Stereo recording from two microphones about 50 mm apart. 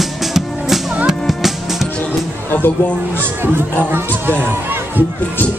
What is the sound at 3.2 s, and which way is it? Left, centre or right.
Speech, right.